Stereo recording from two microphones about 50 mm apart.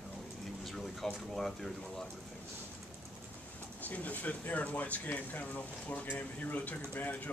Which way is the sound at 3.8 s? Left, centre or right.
Left.